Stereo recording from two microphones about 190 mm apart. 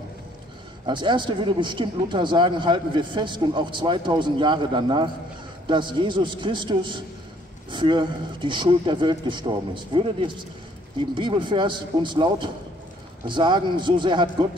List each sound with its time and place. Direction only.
0.8 s speech: 25° right (ahead or behind)